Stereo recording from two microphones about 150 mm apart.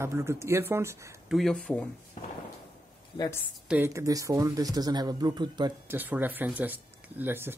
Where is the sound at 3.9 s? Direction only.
20° right (ahead or behind).